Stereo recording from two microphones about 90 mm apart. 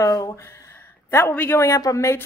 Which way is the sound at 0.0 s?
40° left (ahead or behind).